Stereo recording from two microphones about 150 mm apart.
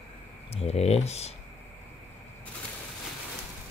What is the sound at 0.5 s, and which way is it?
Speech, 45° left (ahead or behind).